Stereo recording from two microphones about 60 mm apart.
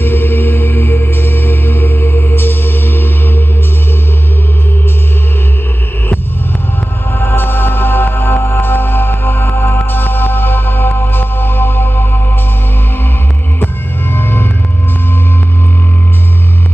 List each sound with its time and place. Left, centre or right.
0.0 s music: left
7.2 s music: left
14.1 s music: left